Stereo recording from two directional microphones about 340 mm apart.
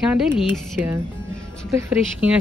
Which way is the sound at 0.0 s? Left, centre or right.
Centre.